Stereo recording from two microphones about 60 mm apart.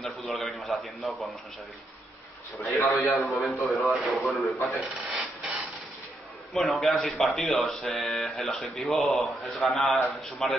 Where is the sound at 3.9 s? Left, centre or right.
Centre.